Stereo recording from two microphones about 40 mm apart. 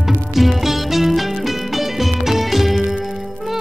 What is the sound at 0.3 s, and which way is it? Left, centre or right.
Music, centre.